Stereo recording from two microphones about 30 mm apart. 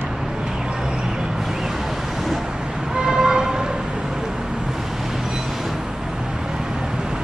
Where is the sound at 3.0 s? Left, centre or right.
Centre.